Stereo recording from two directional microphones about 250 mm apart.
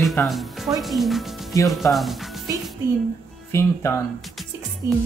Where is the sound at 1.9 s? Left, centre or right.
Centre.